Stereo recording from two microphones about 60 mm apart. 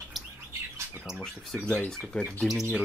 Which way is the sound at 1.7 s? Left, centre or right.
Centre.